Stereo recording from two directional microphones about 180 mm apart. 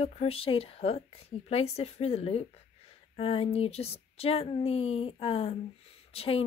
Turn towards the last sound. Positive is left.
turn(degrees=35)  # may be behind; listen again after turning